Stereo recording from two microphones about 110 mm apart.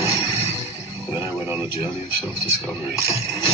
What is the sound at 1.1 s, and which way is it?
Speech, 20° right (ahead or behind).